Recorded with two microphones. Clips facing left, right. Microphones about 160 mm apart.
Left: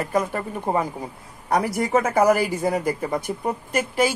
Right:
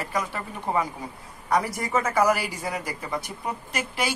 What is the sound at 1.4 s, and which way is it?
Speech, 60° left (ahead or behind).